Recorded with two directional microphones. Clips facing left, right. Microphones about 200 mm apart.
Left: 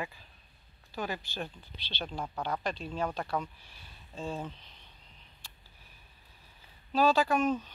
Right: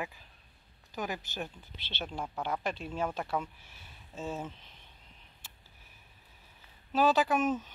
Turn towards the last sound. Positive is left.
turn(degrees=-5)  # may be behind; listen again after turning